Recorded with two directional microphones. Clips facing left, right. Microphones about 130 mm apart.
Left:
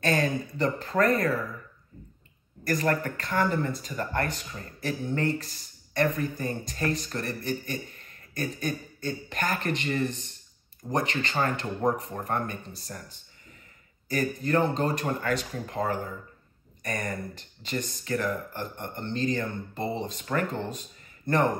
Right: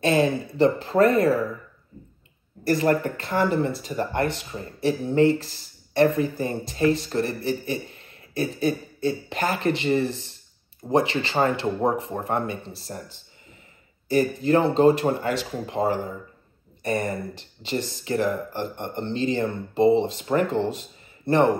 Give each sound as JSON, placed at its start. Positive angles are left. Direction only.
{"t": 0.0, "sound": "speech", "side_deg": -30}
{"t": 2.6, "sound": "speech", "side_deg": -30}
{"t": 14.0, "sound": "speech", "side_deg": -30}